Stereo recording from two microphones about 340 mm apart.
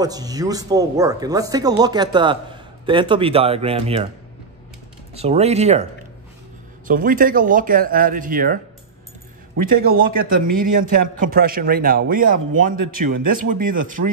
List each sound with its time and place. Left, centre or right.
0.0 s speech: centre
5.1 s a man's voice: centre
6.9 s a man's voice: right
9.9 s a man's voice: right